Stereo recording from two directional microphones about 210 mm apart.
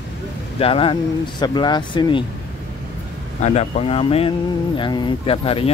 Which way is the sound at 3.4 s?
30° left (ahead or behind).